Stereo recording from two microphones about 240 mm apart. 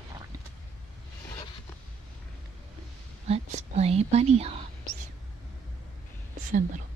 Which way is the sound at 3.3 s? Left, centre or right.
Right.